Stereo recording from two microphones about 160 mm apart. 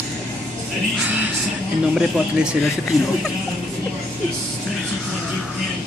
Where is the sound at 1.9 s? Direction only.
5° right (ahead or behind).